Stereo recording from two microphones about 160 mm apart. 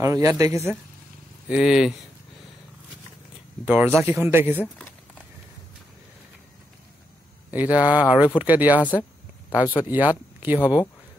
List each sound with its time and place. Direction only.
0.0 s a man's voice: 20° right (ahead or behind)
1.5 s speech: 5° right (ahead or behind)
3.6 s speech: 10° right (ahead or behind)
7.5 s speech: 10° right (ahead or behind)